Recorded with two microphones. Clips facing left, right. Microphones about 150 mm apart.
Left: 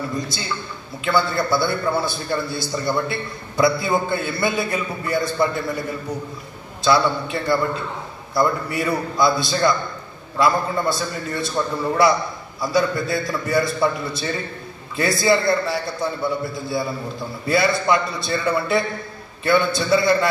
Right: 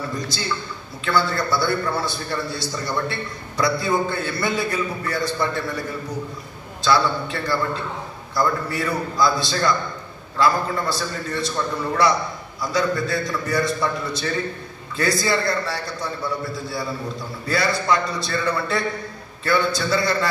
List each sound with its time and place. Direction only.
1.0 s a man's voice: 25° left (ahead or behind)